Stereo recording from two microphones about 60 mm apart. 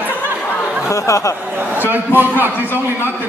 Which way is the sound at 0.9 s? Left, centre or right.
Left.